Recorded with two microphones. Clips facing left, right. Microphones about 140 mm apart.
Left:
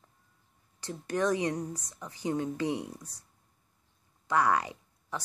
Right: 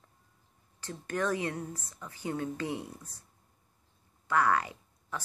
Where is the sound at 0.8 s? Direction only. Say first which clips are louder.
Left 3 dB; 15° left (ahead or behind).